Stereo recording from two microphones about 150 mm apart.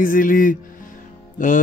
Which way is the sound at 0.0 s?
65° left (ahead or behind).